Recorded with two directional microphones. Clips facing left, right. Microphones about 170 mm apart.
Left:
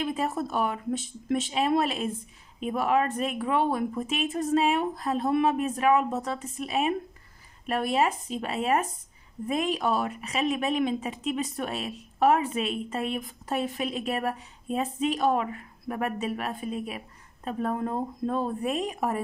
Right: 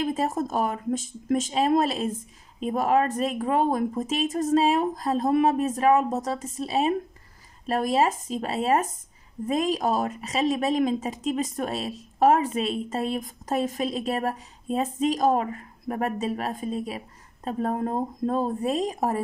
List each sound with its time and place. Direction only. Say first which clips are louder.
0.0 s a woman's voice: right 3 dB; 40° right (ahead or behind)